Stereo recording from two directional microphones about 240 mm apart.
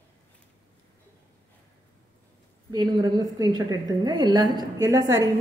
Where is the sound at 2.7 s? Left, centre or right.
Centre.